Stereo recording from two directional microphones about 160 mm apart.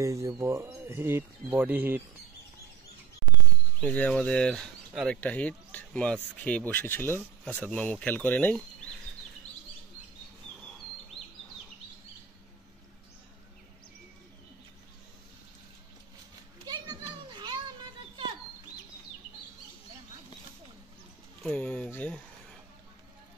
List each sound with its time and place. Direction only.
0.0 s speech: 20° right (ahead or behind)
3.8 s speech: 10° left (ahead or behind)
16.6 s children playing: 25° right (ahead or behind)
21.4 s a sound: 10° left (ahead or behind)